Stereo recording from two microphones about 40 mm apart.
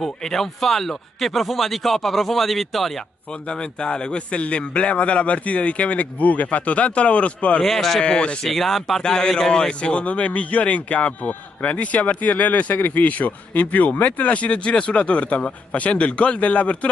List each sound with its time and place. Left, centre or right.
0.0 s speech: centre
3.4 s speech: left
7.6 s speech: centre
8.0 s speech: left
8.5 s speech: centre
9.0 s speech: centre; by 16.9 s left